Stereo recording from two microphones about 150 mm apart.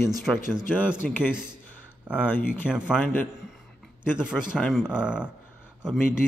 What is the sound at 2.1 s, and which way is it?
Speech, 10° right (ahead or behind).